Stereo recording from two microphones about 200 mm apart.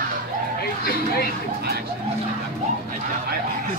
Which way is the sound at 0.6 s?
50° left (ahead or behind).